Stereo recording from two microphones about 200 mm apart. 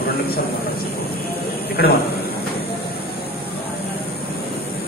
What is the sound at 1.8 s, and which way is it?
Speech, 50° left (ahead or behind).